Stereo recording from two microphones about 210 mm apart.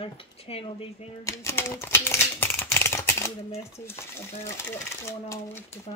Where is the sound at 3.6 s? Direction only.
15° left (ahead or behind).